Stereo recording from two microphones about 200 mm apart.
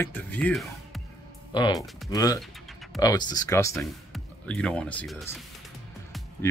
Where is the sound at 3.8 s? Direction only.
Centre (ahead or behind).